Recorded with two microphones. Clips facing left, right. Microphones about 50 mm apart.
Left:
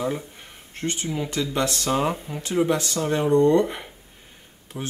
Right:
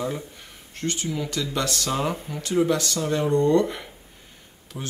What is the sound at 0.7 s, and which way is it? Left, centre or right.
Speech, left.